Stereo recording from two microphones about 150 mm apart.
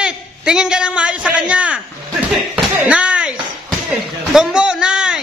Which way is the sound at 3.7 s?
Centre (ahead or behind).